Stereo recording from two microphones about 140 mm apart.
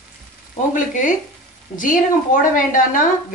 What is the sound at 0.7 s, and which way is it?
A woman's voice, 65° left (ahead or behind).